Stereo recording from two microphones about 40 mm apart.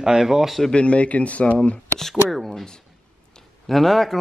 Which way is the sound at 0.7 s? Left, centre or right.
Left.